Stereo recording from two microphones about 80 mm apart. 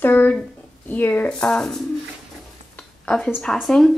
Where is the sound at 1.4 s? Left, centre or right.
Centre.